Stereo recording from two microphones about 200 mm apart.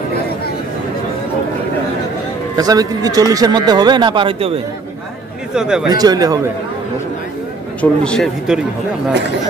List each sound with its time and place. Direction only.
2.5 s speech: 20° right (ahead or behind)
5.5 s speech: 5° right (ahead or behind)
5.9 s speech: 20° right (ahead or behind)
7.8 s speech: 5° left (ahead or behind)